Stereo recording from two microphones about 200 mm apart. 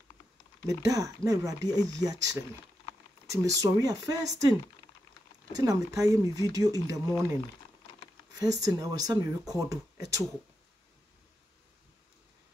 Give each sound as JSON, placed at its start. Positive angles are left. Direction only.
{"t": 0.7, "sound": "speech", "side_deg": -15}
{"t": 8.4, "sound": "speech", "side_deg": -20}